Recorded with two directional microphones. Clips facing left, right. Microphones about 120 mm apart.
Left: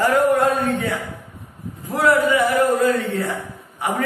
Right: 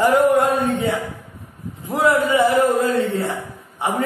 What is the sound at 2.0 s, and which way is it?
A man's voice, 20° right (ahead or behind).